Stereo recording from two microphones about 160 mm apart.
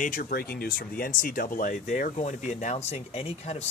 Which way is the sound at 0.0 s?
60° left (ahead or behind).